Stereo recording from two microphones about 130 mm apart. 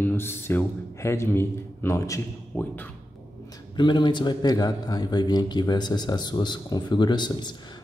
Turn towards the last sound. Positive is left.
turn(degrees=35)  # may be behind; listen again after turning